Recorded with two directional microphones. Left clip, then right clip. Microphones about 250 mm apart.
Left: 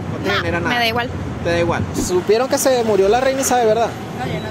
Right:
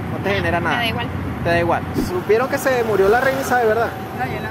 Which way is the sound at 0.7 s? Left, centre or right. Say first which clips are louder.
Left 4 dB; left.